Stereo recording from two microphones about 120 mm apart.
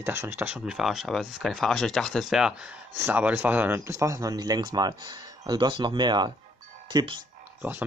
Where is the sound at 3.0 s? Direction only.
15° right (ahead or behind); by 7.2 s 35° right (ahead or behind).